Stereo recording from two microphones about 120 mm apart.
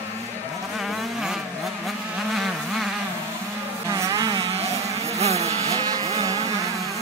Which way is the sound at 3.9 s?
30° right (ahead or behind).